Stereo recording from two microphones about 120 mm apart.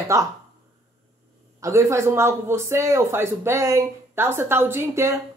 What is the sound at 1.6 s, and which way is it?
Speech, 25° right (ahead or behind).